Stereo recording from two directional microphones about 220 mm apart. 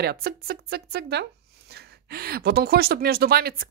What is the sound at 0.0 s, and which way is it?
Speech, 45° right (ahead or behind).